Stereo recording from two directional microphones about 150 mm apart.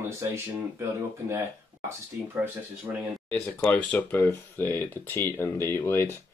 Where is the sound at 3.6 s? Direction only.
10° left (ahead or behind).